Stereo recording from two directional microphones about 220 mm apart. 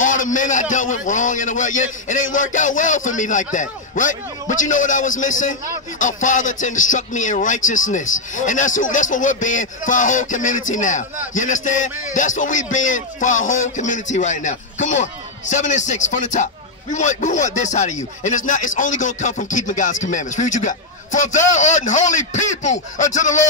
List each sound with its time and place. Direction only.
0.0 s a man's voice: 35° left (ahead or behind)